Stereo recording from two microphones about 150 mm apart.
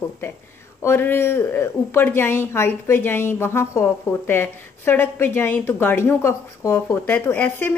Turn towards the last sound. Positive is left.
turn(degrees=10)  # may be behind; listen again after turning